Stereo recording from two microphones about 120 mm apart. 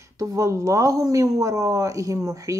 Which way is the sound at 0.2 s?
30° right (ahead or behind).